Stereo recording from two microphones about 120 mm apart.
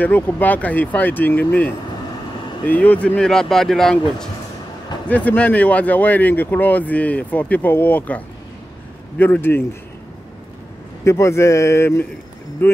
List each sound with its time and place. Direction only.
0.0 s speech: 15° left (ahead or behind)
9.2 s speech: 15° left (ahead or behind)
11.1 s speech: 25° left (ahead or behind)